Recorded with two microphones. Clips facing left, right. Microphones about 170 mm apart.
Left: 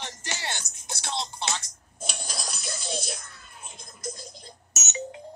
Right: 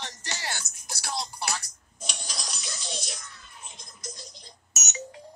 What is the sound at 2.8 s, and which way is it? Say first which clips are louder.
Music: left 5 dB; 55° left (ahead or behind).